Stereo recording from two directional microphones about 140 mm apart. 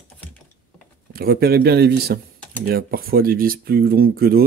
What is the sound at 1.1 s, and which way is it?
Speech, 90° right.